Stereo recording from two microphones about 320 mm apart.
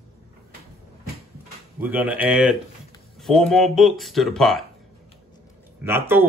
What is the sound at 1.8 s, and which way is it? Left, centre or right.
Speech, centre.